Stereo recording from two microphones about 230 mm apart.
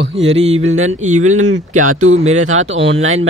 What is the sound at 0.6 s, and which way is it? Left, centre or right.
Speech, right.